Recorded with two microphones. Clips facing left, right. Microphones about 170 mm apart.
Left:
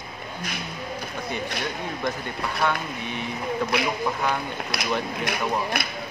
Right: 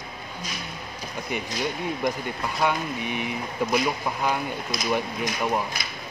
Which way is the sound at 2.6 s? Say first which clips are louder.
Right 2 dB; 15° right (ahead or behind).